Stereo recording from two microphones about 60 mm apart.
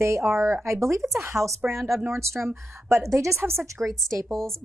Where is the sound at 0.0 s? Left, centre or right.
Right.